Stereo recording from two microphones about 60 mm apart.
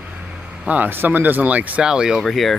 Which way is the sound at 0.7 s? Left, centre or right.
Right.